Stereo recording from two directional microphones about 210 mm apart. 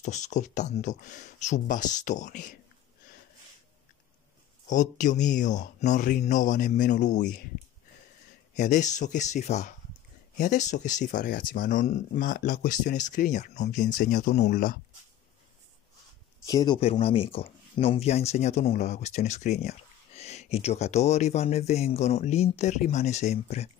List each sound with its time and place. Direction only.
0.0 s speech: 35° left (ahead or behind)
4.6 s speech: 35° left (ahead or behind)
8.5 s speech: 35° left (ahead or behind)
16.4 s speech: 20° left (ahead or behind)